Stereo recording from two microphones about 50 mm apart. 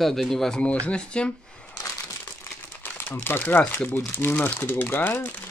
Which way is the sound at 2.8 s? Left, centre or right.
Left.